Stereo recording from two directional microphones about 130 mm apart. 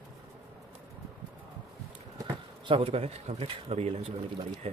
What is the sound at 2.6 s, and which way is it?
Speech, 45° right (ahead or behind).